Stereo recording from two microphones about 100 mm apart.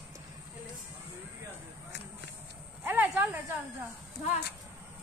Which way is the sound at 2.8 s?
20° right (ahead or behind).